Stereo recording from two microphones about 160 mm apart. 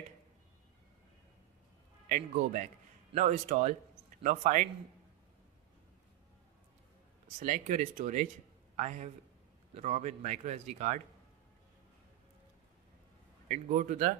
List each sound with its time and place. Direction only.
2.0 s a man's voice: 55° right (ahead or behind)
7.3 s a man's voice: 50° right (ahead or behind)
13.5 s speech: 55° right (ahead or behind)